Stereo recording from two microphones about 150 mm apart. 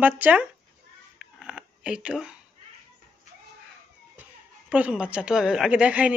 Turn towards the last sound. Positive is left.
turn(degrees=-10)  # may be behind; listen again after turning